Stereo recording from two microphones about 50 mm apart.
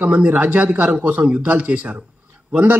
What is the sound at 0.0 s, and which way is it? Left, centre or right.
A man's voice, right.